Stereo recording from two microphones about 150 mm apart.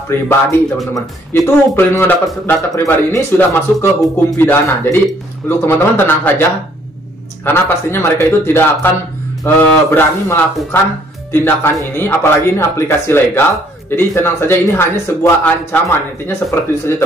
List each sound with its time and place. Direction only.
0.1 s speech: 15° left (ahead or behind)
7.4 s speech: 15° left (ahead or behind)